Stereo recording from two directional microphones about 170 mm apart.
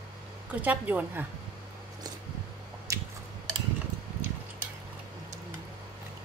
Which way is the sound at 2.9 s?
20° right (ahead or behind).